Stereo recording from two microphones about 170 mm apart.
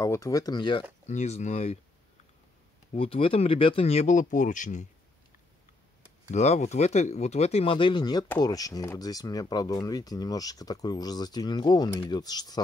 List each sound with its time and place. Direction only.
0.0 s speech: 20° left (ahead or behind)
1.0 s speech: 40° left (ahead or behind)
2.9 s speech: 35° left (ahead or behind)
6.3 s speech: 40° left (ahead or behind); by 12.5 s 25° left (ahead or behind)